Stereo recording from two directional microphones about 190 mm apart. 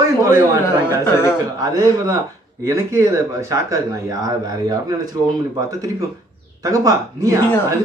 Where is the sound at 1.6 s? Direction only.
20° right (ahead or behind).